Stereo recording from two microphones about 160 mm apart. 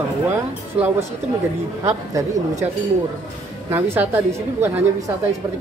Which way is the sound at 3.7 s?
15° right (ahead or behind).